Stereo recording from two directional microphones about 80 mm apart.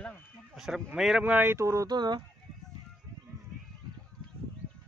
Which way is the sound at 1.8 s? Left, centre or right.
Right.